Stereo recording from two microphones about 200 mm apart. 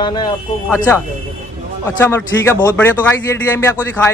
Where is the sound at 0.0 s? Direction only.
20° left (ahead or behind).